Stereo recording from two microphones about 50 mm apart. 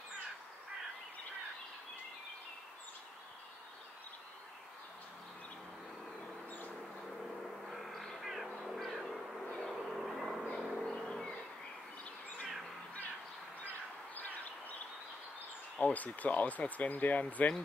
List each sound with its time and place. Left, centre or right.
7.6 s music: centre
10.5 s vehicle: centre
13.6 s a sound: left
15.8 s speech: left